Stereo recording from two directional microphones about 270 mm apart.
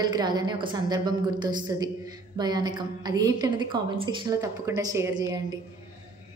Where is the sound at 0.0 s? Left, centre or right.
Centre.